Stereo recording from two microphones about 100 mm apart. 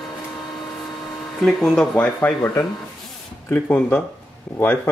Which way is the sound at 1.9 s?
15° left (ahead or behind).